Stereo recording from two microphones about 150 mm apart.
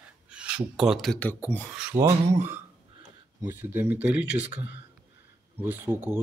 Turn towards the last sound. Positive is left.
turn(degrees=-15)  # may be behind; listen again after turning